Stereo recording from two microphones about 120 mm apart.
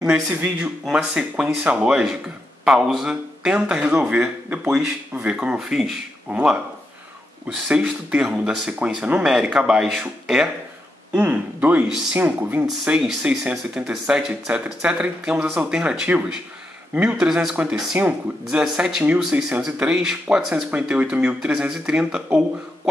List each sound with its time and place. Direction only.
0.8 s speech: 10° right (ahead or behind)
15.4 s speech: 20° right (ahead or behind)
15.7 s speech: 5° right (ahead or behind)